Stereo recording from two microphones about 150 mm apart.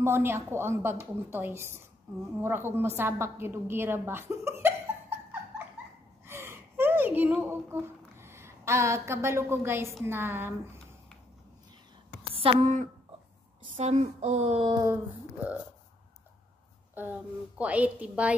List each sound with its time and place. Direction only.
0.0 s a woman's voice: 15° right (ahead or behind)
6.2 s gasp: 15° right (ahead or behind)
8.2 s a woman's voice: 15° right (ahead or behind)
12.4 s a sound: 50° right (ahead or behind)
14.7 s a sound: 25° right (ahead or behind)
16.9 s a woman's voice: 10° right (ahead or behind)